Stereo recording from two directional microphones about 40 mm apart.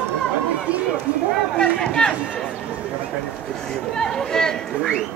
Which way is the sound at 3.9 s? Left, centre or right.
Centre.